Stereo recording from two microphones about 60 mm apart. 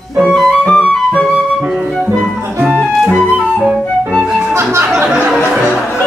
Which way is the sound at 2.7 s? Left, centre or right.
Right.